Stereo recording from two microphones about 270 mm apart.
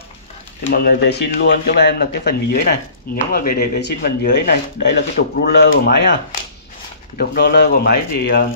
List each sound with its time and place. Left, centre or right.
0.7 s speech: left
7.2 s speech: left